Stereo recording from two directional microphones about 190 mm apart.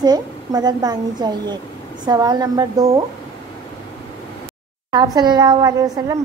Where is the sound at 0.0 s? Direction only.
20° right (ahead or behind).